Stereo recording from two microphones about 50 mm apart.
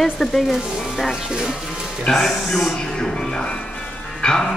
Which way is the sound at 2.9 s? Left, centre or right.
Centre.